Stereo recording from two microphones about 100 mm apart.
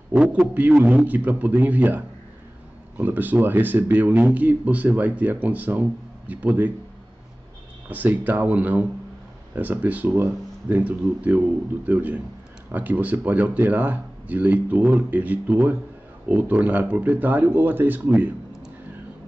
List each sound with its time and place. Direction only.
0.1 s speech: 10° right (ahead or behind)
7.9 s speech: 15° right (ahead or behind)